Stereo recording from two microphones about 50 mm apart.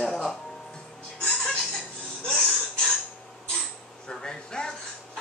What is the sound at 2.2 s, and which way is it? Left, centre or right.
Gasp, centre.